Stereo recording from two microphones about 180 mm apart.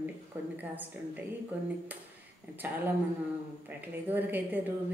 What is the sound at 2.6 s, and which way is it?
Speech, 10° right (ahead or behind).